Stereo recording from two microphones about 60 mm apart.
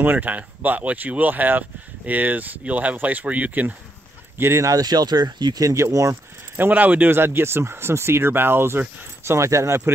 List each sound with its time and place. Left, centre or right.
0.0 s speech: right
4.4 s speech: right
4.6 s speech: right
6.5 s speech: right